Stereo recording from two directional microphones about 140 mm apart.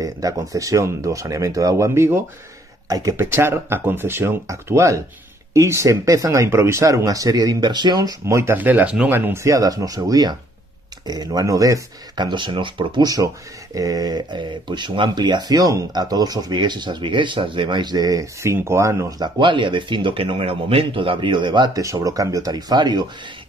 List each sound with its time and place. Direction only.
0.0 s speech: 25° right (ahead or behind)